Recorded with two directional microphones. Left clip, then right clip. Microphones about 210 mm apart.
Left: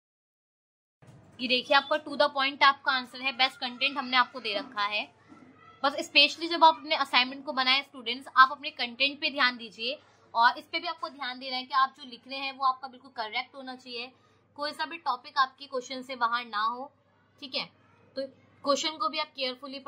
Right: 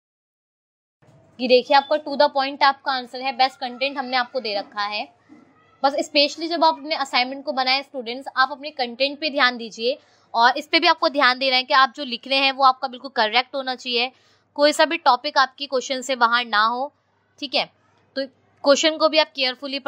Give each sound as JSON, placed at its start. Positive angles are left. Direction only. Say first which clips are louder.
{"t": 1.3, "sound": "a woman's voice", "louder": "right 9 dB", "side_deg": -25}